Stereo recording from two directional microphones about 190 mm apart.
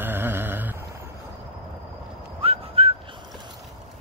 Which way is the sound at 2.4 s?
30° right (ahead or behind).